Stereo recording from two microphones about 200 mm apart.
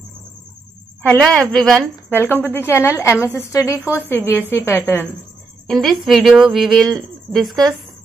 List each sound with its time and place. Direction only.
1.0 s a woman's voice: 5° left (ahead or behind)